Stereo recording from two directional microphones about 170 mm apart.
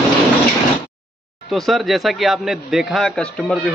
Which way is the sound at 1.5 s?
Centre (ahead or behind).